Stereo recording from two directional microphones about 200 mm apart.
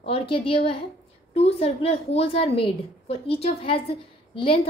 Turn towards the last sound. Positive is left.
turn(degrees=25)  # may be behind; listen again after turning